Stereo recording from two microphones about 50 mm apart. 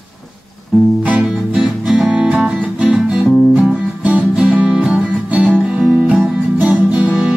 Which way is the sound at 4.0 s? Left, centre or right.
Right.